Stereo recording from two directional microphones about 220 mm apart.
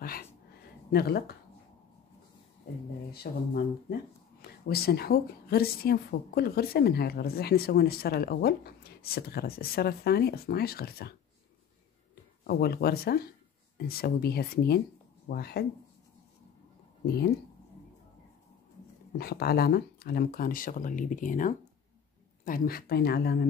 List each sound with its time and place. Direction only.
0.0 s a sound: 40° left (ahead or behind)
0.9 s a woman's voice: 45° left (ahead or behind)
3.1 s a woman's voice: 45° left (ahead or behind)
12.4 s a woman's voice: 45° left (ahead or behind)
17.0 s speech: 45° left (ahead or behind)
19.1 s a woman's voice: 45° left (ahead or behind)